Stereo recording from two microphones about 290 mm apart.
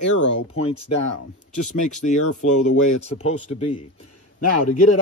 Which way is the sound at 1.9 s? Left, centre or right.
Left.